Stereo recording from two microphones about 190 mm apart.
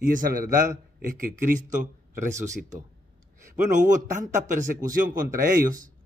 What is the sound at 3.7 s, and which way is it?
A man's voice, 40° right (ahead or behind).